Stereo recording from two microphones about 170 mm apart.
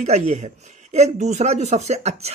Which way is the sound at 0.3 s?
40° right (ahead or behind).